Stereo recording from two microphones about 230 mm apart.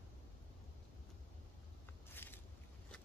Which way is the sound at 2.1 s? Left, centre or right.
Centre.